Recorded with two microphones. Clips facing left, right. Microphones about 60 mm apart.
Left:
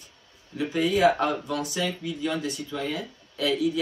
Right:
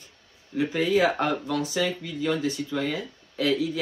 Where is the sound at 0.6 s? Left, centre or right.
Right.